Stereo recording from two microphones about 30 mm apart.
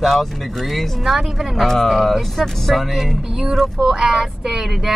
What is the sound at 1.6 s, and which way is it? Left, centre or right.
Speech, centre.